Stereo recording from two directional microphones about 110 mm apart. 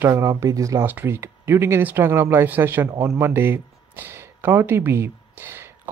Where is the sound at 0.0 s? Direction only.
30° right (ahead or behind).